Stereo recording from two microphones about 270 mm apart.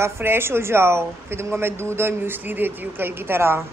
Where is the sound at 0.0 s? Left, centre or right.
Centre.